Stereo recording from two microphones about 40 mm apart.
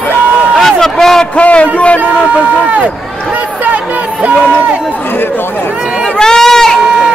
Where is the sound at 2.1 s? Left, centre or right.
Right.